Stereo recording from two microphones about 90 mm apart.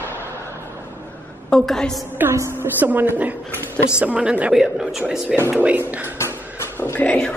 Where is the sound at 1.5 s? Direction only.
5° left (ahead or behind).